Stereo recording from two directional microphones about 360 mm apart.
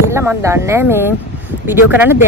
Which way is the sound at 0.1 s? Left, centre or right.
Centre.